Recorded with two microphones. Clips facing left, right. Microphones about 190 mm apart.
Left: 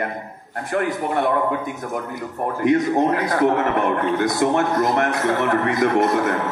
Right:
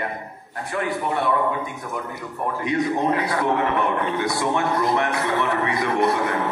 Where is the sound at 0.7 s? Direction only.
45° left (ahead or behind).